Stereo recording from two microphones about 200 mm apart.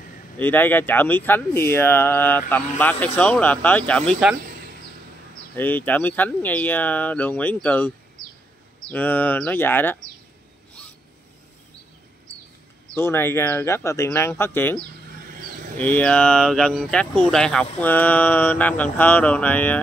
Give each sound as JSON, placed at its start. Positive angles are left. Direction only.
{"t": 0.4, "sound": "speech", "side_deg": 10}
{"t": 5.6, "sound": "speech", "side_deg": 10}
{"t": 8.9, "sound": "speech", "side_deg": 10}
{"t": 12.9, "sound": "speech", "side_deg": 10}
{"t": 15.8, "sound": "speech", "side_deg": 5}